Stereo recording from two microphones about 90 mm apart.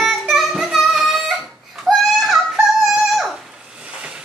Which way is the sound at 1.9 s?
Centre (ahead or behind).